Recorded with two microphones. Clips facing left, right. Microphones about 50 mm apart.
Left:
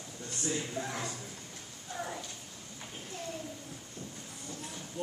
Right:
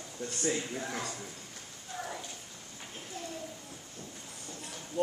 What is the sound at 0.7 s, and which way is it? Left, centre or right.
Speech, centre.